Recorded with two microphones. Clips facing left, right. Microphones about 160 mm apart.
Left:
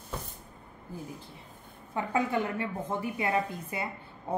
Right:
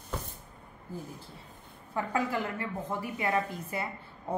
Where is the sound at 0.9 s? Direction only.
15° left (ahead or behind).